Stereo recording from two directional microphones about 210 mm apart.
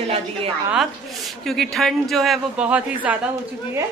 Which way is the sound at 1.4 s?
Centre (ahead or behind).